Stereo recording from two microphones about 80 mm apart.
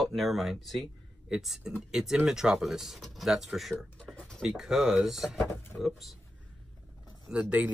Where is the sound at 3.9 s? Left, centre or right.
Centre.